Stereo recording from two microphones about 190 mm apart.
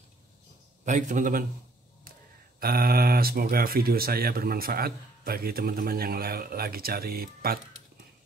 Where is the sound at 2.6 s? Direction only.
50° right (ahead or behind).